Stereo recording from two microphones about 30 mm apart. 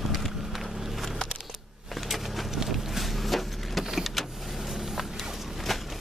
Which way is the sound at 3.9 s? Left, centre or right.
Centre.